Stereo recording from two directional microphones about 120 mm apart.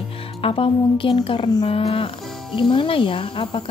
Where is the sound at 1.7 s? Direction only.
50° left (ahead or behind).